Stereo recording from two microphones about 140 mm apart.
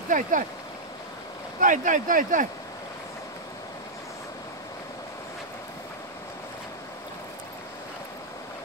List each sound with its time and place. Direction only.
0.1 s speech: 65° right (ahead or behind)
1.6 s speech: 70° right (ahead or behind)